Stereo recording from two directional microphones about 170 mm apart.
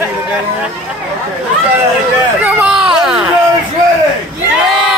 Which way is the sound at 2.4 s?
10° right (ahead or behind).